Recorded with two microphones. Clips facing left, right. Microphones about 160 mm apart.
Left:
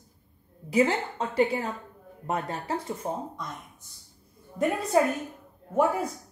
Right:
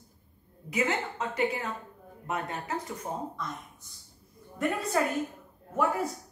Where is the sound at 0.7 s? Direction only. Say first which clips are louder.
Left 6 dB; 35° left (ahead or behind).